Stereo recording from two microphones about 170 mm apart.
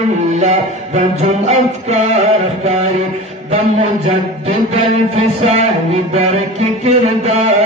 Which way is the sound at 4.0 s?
40° right (ahead or behind).